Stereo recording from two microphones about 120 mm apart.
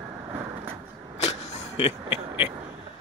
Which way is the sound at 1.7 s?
50° left (ahead or behind).